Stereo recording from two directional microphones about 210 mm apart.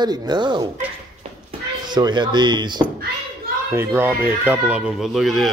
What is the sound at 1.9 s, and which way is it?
Speech, 20° right (ahead or behind).